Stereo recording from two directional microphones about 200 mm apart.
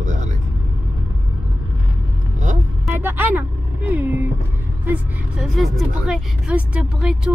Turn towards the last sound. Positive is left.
turn(degrees=-5)  # may be behind; listen again after turning